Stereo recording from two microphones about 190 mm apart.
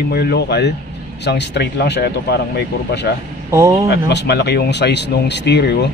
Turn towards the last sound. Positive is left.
turn(degrees=60)  # may be behind; listen again after turning